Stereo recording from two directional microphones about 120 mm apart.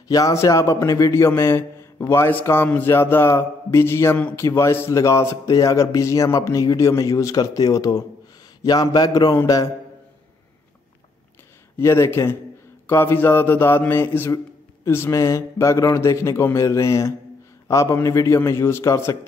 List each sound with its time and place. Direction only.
0.1 s a man's voice: 25° left (ahead or behind)
9.3 s a man's voice: 20° left (ahead or behind)
11.8 s a man's voice: 20° left (ahead or behind)